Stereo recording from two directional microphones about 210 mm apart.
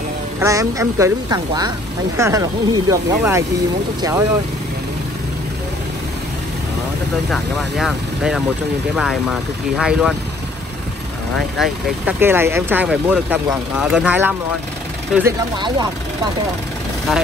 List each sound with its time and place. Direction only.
0.4 s speech: 15° right (ahead or behind)
7.2 s speech: centre (ahead or behind)
9.8 s speech: centre (ahead or behind)
11.3 s speech: centre (ahead or behind)